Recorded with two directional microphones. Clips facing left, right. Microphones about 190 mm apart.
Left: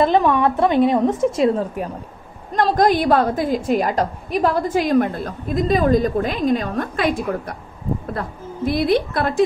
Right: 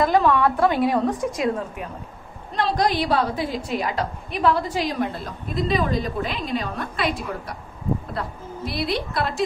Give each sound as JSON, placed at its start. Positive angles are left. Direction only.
{"t": 0.0, "sound": "speech", "side_deg": 20}
{"t": 2.5, "sound": "a woman's voice", "side_deg": 50}